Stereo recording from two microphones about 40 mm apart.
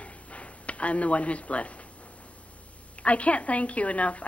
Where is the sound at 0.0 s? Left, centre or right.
Left.